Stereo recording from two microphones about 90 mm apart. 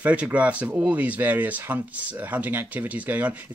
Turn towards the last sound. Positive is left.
turn(degrees=-20)  # may be behind; listen again after turning